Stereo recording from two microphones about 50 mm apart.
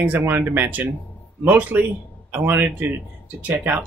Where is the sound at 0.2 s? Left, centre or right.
Right.